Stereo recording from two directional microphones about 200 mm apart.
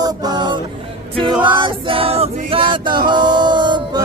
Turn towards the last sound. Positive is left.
turn(degrees=-20)  # may be behind; listen again after turning